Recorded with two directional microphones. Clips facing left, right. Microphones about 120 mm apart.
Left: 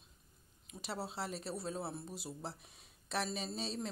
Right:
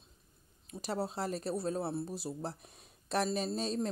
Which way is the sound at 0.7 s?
45° right (ahead or behind).